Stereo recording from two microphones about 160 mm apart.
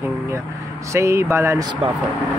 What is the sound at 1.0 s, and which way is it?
Speech, 15° right (ahead or behind).